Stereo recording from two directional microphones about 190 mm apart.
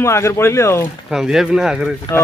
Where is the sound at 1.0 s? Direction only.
5° right (ahead or behind).